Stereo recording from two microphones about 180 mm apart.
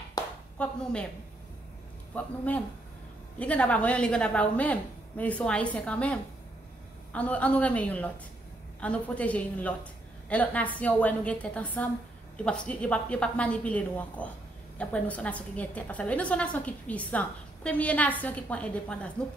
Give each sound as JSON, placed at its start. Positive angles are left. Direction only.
{"t": 0.2, "sound": "a sound", "side_deg": 20}
{"t": 0.6, "sound": "a woman's voice", "side_deg": 5}
{"t": 2.1, "sound": "a woman's voice", "side_deg": 10}